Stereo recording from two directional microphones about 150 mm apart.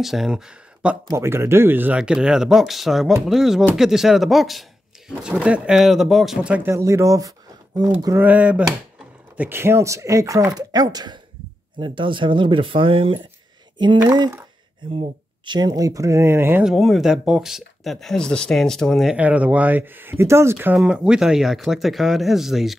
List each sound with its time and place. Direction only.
0.0 s speech: centre (ahead or behind)
1.0 s speech: 15° right (ahead or behind)
6.7 s speech: 20° right (ahead or behind)
16.6 s speech: centre (ahead or behind)